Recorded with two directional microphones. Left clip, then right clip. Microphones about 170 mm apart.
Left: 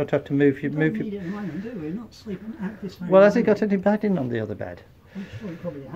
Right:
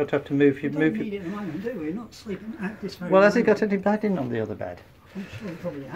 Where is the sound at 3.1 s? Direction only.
20° left (ahead or behind).